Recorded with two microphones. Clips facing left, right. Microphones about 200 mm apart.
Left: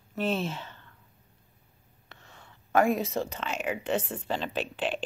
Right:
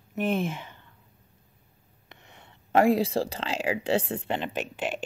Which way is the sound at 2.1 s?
20° right (ahead or behind).